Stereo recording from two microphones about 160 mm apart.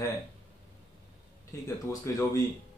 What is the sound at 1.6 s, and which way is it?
Speech, 20° left (ahead or behind).